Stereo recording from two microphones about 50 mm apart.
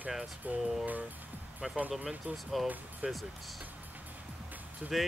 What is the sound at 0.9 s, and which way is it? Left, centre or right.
Speech, right.